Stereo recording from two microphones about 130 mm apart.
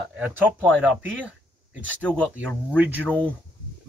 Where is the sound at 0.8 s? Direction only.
5° right (ahead or behind).